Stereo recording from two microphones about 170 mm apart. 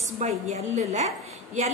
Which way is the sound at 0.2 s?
40° right (ahead or behind).